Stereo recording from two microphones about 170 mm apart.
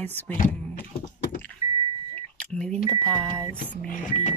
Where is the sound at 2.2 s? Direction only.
5° left (ahead or behind).